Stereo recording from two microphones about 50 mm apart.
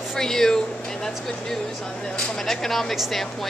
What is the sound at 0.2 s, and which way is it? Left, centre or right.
Speech, centre.